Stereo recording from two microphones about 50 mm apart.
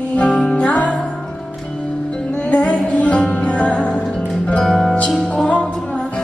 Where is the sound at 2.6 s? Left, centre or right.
Left.